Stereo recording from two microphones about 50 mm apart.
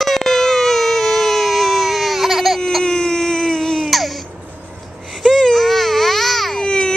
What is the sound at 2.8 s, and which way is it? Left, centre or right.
Baby cry, centre.